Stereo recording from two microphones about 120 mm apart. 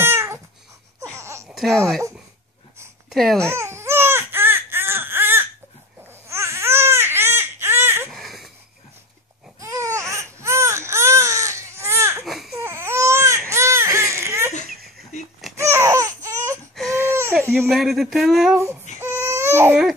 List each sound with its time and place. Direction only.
0.0 s cat: 20° right (ahead or behind)
1.1 s a sound: 25° right (ahead or behind)
1.5 s speech: 5° left (ahead or behind)
3.1 s speech: centre (ahead or behind)
3.3 s baby cry: 20° right (ahead or behind)
8.1 s babbling: centre (ahead or behind)
9.6 s baby cry: 25° right (ahead or behind)
12.3 s baby cry: centre (ahead or behind)
12.5 s baby cry: 20° right (ahead or behind)
15.5 s a sound: 25° right (ahead or behind)
16.7 s baby cry: centre (ahead or behind)
17.0 s a sound: 20° right (ahead or behind)
17.5 s a sound: centre (ahead or behind)
18.9 s baby cry: 20° right (ahead or behind)